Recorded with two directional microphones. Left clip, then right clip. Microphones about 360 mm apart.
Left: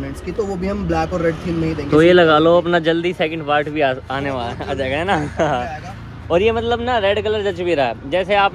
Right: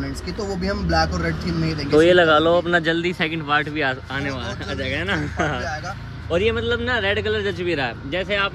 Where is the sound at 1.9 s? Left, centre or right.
Centre.